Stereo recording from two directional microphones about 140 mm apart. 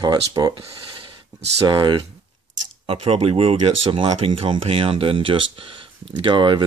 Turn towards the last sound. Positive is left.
turn(degrees=-35)  # may be behind; listen again after turning